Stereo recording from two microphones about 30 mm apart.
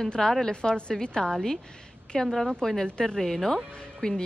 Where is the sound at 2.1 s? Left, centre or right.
Left.